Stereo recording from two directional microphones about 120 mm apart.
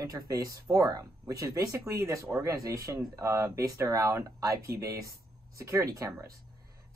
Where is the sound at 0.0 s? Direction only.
30° right (ahead or behind).